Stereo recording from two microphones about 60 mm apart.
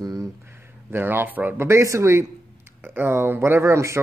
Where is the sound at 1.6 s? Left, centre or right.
Right.